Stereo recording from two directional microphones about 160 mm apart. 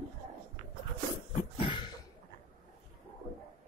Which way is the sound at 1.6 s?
30° left (ahead or behind).